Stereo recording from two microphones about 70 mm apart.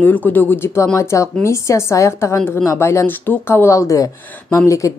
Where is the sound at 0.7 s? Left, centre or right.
Left.